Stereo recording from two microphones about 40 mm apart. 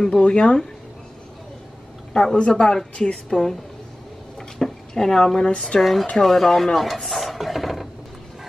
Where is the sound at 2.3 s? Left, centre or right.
Left.